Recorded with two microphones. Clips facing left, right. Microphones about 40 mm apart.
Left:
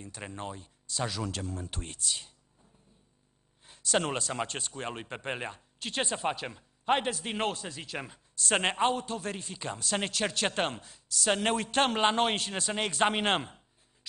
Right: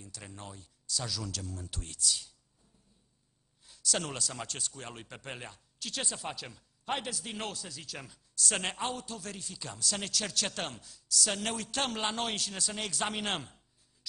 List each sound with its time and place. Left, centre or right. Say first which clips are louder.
0.0 s a man's voice: left 7 dB; left
3.6 s a man's voice: left 6 dB; left